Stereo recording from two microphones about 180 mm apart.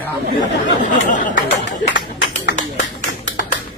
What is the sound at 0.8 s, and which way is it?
Speech, 45° left (ahead or behind).